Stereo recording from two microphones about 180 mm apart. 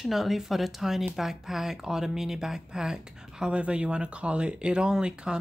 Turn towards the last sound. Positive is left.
turn(degrees=-5)  # may be behind; listen again after turning